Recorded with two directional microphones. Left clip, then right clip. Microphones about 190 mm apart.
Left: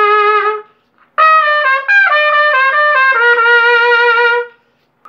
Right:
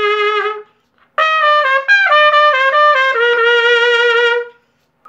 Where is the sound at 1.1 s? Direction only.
50° right (ahead or behind).